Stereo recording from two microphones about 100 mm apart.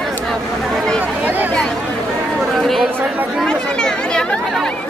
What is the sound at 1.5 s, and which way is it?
Chatter, 5° left (ahead or behind).